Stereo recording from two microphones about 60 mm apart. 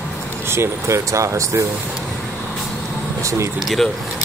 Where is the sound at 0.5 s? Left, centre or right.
Right.